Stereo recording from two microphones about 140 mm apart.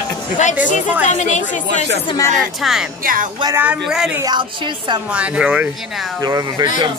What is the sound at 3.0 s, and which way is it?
Music, 80° right.